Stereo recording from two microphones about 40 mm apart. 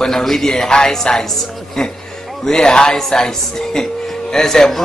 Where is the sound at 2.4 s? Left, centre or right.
Centre.